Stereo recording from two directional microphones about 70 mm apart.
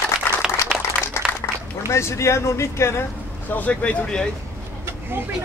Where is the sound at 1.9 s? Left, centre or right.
Left.